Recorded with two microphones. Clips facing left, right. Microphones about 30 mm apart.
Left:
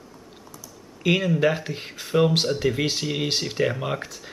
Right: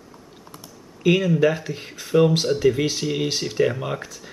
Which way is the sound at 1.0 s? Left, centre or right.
Centre.